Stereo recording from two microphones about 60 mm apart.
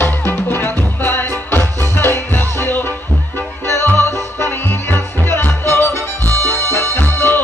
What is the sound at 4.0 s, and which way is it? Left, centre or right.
Music, left.